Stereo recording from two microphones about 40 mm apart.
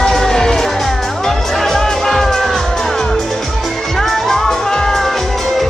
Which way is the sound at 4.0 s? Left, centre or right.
Centre.